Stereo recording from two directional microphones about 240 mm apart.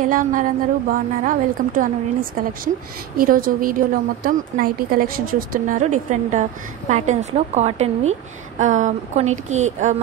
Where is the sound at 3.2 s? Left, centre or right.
Right.